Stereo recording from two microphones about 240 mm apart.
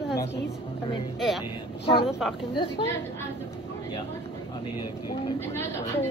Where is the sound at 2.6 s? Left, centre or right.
Centre.